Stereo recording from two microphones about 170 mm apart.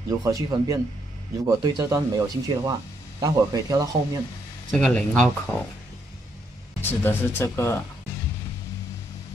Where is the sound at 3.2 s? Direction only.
20° right (ahead or behind).